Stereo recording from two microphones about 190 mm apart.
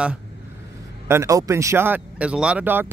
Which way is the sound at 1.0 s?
15° right (ahead or behind).